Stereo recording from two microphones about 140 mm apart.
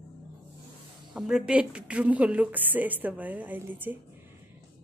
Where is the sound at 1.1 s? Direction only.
5° right (ahead or behind).